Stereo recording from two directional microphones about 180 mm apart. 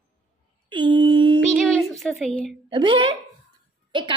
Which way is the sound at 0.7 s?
25° right (ahead or behind).